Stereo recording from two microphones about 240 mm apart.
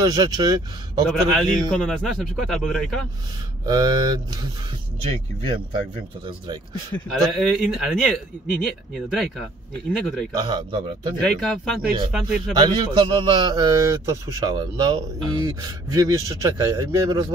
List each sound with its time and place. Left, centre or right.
0.0 s a man's voice: centre
1.0 s speech: centre
3.6 s a man's voice: centre
6.9 s speech: centre
10.3 s speech: centre
11.1 s speech: centre
12.5 s a man's voice: centre